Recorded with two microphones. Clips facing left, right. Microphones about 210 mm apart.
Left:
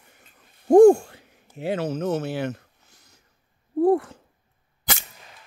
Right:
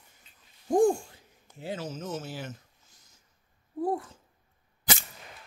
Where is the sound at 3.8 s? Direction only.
70° left (ahead or behind).